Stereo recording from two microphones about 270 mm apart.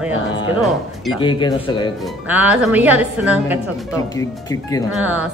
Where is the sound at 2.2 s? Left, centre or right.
Centre.